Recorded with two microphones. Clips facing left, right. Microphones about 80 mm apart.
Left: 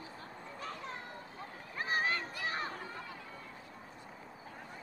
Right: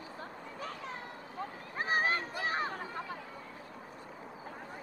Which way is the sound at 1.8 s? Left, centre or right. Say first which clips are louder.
Right 3 dB; right.